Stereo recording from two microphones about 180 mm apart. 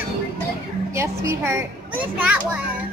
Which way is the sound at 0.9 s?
15° right (ahead or behind).